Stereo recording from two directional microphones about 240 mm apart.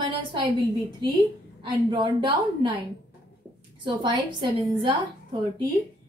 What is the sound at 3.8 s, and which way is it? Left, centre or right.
A woman's voice, centre.